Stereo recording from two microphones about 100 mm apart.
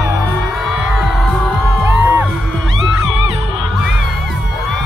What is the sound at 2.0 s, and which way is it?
Music, 20° right (ahead or behind).